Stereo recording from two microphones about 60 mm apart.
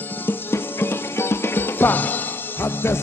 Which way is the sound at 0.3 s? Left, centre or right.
Left.